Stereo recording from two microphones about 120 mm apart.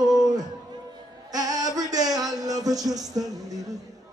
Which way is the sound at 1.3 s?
35° right (ahead or behind).